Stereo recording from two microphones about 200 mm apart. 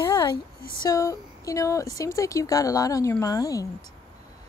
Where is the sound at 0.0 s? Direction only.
20° left (ahead or behind).